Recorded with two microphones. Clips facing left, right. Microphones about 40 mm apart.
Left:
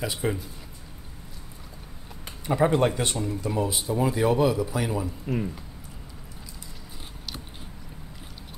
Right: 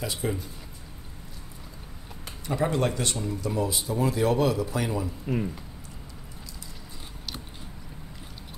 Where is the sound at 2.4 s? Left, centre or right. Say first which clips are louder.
Left 4 dB; left; by 5.5 s centre.